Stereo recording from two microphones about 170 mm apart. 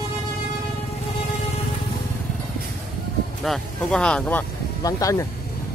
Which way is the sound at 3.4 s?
5° left (ahead or behind).